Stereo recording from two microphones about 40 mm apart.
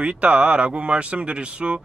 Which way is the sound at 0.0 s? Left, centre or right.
Right.